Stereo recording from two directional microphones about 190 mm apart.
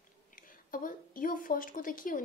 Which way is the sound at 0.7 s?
45° left (ahead or behind).